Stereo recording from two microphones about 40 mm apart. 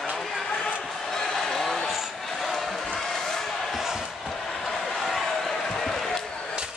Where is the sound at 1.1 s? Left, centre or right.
Centre.